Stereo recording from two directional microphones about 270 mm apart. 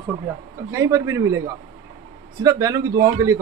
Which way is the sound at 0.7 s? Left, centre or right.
Centre.